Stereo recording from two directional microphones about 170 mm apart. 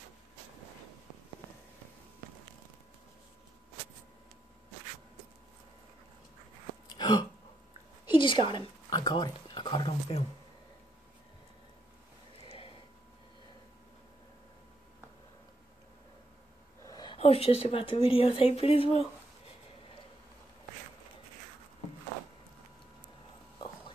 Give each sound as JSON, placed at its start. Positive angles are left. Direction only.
{"t": 7.0, "sound": "throat clearing", "side_deg": 25}
{"t": 8.2, "sound": "a woman's voice", "side_deg": 30}
{"t": 12.4, "sound": "a sound", "side_deg": 30}
{"t": 16.8, "sound": "speech", "side_deg": 25}